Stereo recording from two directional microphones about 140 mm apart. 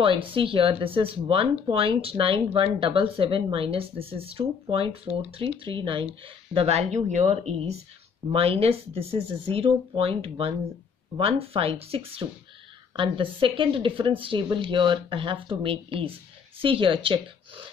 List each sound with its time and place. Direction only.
0.0 s speech: 40° right (ahead or behind)
12.2 s speech: 30° right (ahead or behind)